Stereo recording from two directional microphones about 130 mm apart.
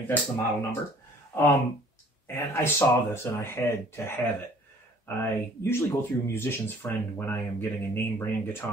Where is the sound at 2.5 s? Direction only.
20° left (ahead or behind).